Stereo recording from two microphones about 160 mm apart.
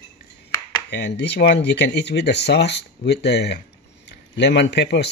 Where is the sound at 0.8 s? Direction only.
90° left.